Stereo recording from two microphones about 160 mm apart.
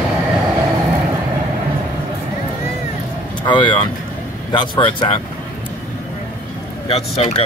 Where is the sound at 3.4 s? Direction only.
30° left (ahead or behind).